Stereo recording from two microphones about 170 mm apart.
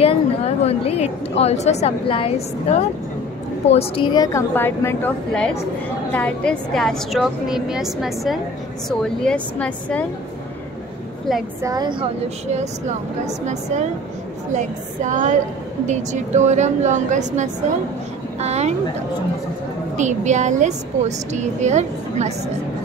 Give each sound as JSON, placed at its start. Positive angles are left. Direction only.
{"t": 0.0, "sound": "a woman's voice", "side_deg": 35}
{"t": 11.6, "sound": "a woman's voice", "side_deg": -25}
{"t": 14.5, "sound": "a woman's voice", "side_deg": -45}
{"t": 20.0, "sound": "a woman's voice", "side_deg": -45}